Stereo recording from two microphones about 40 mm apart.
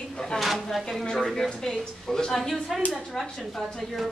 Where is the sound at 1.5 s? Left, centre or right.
Centre.